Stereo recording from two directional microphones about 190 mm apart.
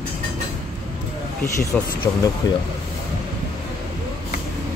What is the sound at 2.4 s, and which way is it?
Speech, 20° left (ahead or behind).